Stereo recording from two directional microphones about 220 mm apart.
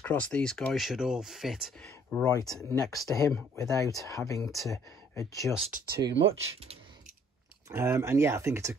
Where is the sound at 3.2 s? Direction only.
15° left (ahead or behind).